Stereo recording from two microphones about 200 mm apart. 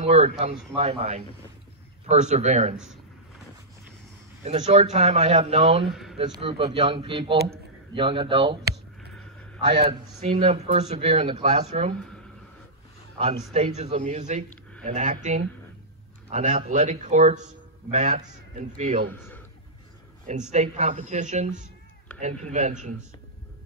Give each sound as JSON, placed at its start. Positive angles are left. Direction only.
{"t": 0.0, "sound": "a man's voice", "side_deg": -30}
{"t": 4.5, "sound": "a man's voice", "side_deg": -30}
{"t": 5.9, "sound": "speech", "side_deg": 0}
{"t": 6.1, "sound": "a man's voice", "side_deg": -25}
{"t": 9.7, "sound": "a man's voice", "side_deg": -25}
{"t": 13.2, "sound": "a man's voice", "side_deg": -30}
{"t": 14.5, "sound": "a sound", "side_deg": 5}
{"t": 14.9, "sound": "a man's voice", "side_deg": -35}
{"t": 16.3, "sound": "a man's voice", "side_deg": -35}
{"t": 19.1, "sound": "a man's voice", "side_deg": 10}
{"t": 20.5, "sound": "a man's voice", "side_deg": -35}